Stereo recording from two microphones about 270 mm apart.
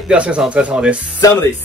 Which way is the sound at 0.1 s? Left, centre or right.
Centre.